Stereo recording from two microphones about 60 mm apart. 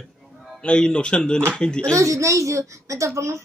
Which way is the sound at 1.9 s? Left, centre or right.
Right.